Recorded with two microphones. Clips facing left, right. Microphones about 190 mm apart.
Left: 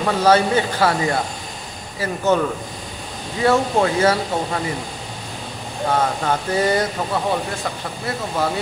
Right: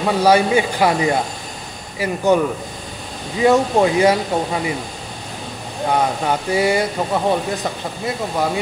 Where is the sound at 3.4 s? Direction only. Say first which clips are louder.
Right 3 dB; 15° right (ahead or behind).